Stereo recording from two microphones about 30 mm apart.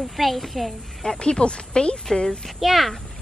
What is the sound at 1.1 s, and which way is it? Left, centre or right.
Speech, left.